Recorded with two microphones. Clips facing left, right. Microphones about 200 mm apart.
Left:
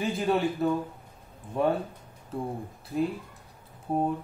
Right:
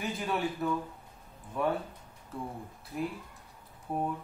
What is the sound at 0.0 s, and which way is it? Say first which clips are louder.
Speech: left 6 dB; 30° left (ahead or behind).